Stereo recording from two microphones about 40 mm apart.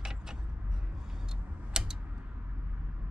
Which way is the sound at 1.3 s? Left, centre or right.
Centre.